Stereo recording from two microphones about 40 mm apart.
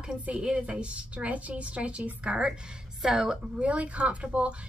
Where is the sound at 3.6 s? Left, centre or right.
Right.